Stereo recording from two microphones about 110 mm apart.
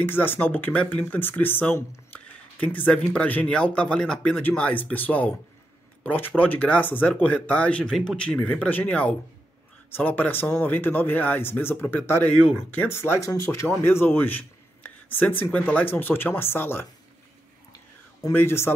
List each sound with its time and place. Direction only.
0.0 s speech: 20° left (ahead or behind)
12.9 s speech: 20° left (ahead or behind)
18.3 s speech: 20° left (ahead or behind)